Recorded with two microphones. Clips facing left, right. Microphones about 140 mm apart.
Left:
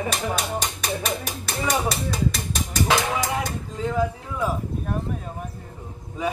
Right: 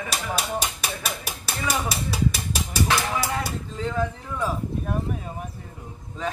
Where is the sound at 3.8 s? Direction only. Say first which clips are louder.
Left 3 dB; 10° left (ahead or behind).